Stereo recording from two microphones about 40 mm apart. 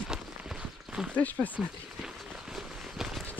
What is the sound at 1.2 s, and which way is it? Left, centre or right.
Speech, left.